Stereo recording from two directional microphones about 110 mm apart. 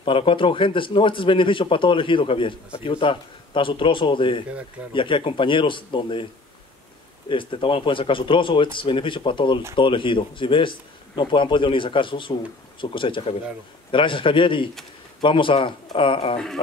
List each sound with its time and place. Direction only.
0.0 s speech: 50° left (ahead or behind)
7.2 s speech: 50° left (ahead or behind)